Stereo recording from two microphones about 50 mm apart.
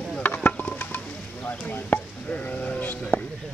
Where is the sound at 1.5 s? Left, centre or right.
Left.